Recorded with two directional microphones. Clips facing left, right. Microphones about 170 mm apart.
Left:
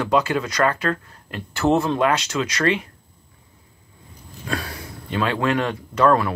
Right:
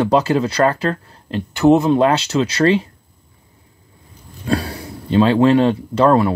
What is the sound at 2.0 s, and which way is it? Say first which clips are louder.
Speech: right 5 dB; 30° right (ahead or behind).